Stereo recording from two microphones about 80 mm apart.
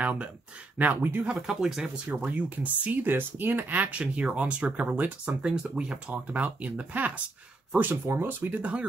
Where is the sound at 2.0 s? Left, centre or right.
Centre.